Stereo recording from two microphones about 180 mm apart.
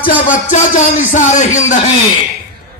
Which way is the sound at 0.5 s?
45° left (ahead or behind).